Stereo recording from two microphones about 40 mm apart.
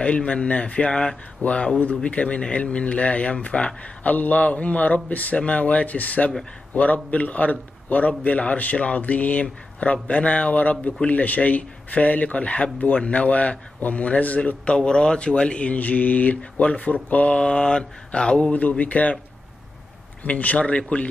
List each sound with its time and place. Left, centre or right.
0.0 s mantra: left
2.0 s speech: left
14.8 s speech: centre; by 17.4 s left
17.4 s mantra: left
18.5 s speech: left
20.2 s speech: left